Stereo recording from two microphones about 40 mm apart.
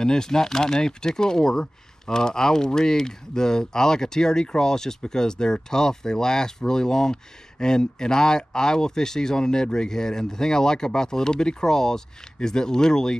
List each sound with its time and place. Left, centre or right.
0.0 s speech: centre